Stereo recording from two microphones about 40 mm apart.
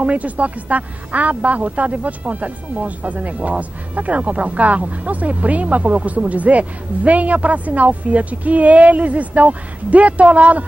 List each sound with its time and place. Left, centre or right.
0.0 s speech: right